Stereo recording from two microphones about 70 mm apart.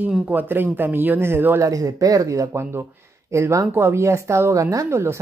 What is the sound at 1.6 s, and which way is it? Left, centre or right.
Speech, right.